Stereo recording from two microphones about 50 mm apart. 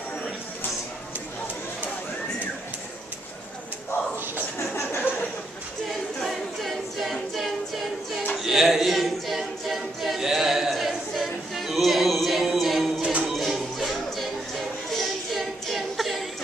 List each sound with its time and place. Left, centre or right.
6.2 s a capella: centre
13.0 s music: right
13.4 s music: centre
14.9 s a sound: centre